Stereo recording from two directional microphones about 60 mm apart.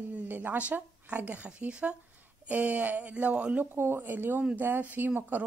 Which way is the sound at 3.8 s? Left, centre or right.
Right.